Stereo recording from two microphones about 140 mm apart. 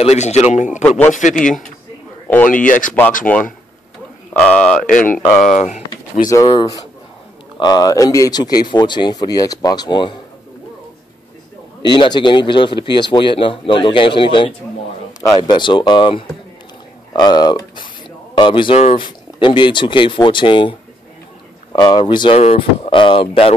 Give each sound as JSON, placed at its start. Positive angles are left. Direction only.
{"t": 0.0, "sound": "a man's voice", "side_deg": 50}
{"t": 0.8, "sound": "speech", "side_deg": 15}
{"t": 2.2, "sound": "speech", "side_deg": 10}
{"t": 2.5, "sound": "speech", "side_deg": 70}
{"t": 3.3, "sound": "speech", "side_deg": 10}
{"t": 5.5, "sound": "speech", "side_deg": 55}
{"t": 6.2, "sound": "speech", "side_deg": 25}
{"t": 11.8, "sound": "a man's voice", "side_deg": 30}
{"t": 21.7, "sound": "a man's voice", "side_deg": 35}